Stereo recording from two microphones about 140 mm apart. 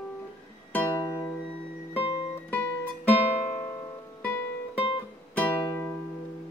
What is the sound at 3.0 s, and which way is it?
Guitar, 15° left (ahead or behind).